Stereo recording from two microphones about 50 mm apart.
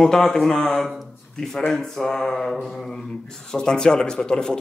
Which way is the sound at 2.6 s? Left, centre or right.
Centre.